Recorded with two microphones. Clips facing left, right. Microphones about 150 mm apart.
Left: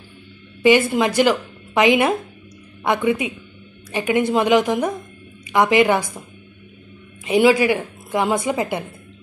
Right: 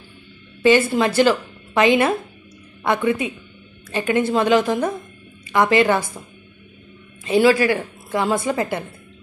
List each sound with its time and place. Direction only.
0.6 s a woman's voice: 15° left (ahead or behind)
7.2 s a woman's voice: 15° left (ahead or behind)